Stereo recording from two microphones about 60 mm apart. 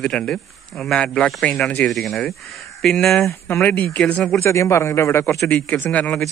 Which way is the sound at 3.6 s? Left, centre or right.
Left.